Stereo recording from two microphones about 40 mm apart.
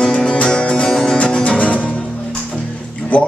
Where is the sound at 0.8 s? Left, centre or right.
Centre.